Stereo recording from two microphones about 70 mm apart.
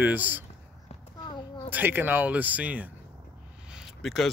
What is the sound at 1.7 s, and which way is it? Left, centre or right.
Speech, right.